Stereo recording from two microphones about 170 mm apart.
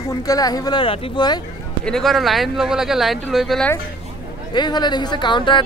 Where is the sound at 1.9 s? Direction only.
Centre (ahead or behind).